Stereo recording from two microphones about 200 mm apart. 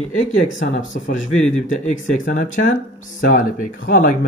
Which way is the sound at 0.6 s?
40° left (ahead or behind).